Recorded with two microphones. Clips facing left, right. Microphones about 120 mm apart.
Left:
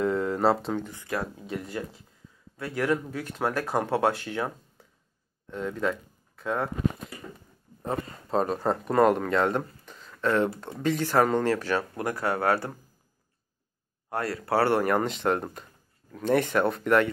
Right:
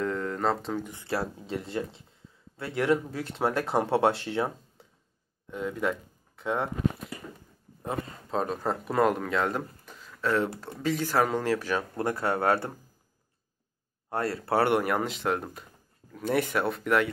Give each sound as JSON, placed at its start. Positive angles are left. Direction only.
{"t": 0.0, "sound": "a sound", "side_deg": 15}
{"t": 0.9, "sound": "speech", "side_deg": -30}
{"t": 5.5, "sound": "speech", "side_deg": -10}
{"t": 8.3, "sound": "speech", "side_deg": 0}
{"t": 12.0, "sound": "speech", "side_deg": -25}
{"t": 14.1, "sound": "speech", "side_deg": -25}
{"t": 14.8, "sound": "speech", "side_deg": -5}